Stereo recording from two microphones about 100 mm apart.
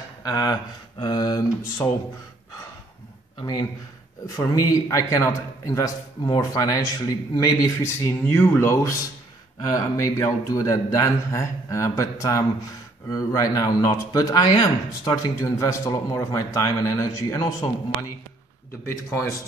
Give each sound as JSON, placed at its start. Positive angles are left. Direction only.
{"t": 0.2, "sound": "speech", "side_deg": 40}
{"t": 3.3, "sound": "speech", "side_deg": 50}
{"t": 4.5, "sound": "a man's voice", "side_deg": 40}